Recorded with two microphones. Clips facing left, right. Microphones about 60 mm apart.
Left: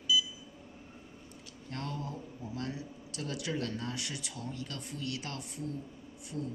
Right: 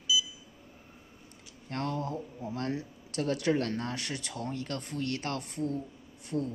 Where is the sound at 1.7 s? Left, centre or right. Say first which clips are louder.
Right 6 dB; right.